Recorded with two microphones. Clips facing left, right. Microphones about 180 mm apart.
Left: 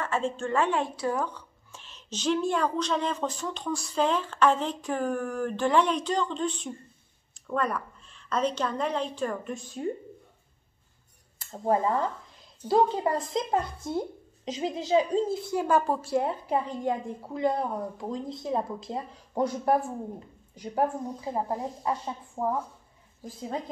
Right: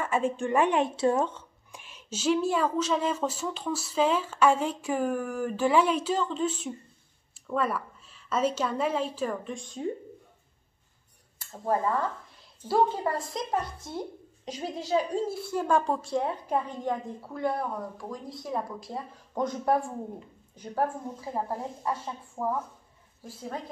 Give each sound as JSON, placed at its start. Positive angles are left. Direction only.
{"t": 0.0, "sound": "a woman's voice", "side_deg": -10}
{"t": 1.8, "sound": "speech", "side_deg": -10}
{"t": 11.5, "sound": "a woman's voice", "side_deg": 20}
{"t": 14.4, "sound": "a woman's voice", "side_deg": 20}
{"t": 15.6, "sound": "a woman's voice", "side_deg": 5}
{"t": 19.3, "sound": "a woman's voice", "side_deg": 10}